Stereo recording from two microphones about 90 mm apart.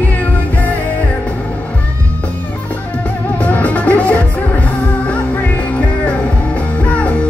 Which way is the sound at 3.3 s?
15° left (ahead or behind).